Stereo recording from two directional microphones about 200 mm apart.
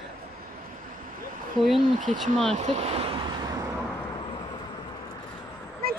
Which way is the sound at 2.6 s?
35° right (ahead or behind).